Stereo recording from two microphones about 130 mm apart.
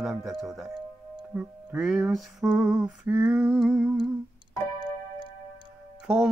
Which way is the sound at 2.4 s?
15° right (ahead or behind).